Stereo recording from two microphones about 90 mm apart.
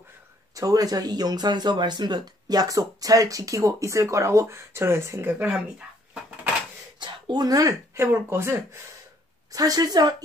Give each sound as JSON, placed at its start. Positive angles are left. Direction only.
{"t": 0.6, "sound": "speech", "side_deg": -40}
{"t": 5.3, "sound": "speech", "side_deg": -10}
{"t": 7.0, "sound": "speech", "side_deg": -50}
{"t": 8.0, "sound": "speech", "side_deg": -30}
{"t": 9.5, "sound": "a woman's voice", "side_deg": -45}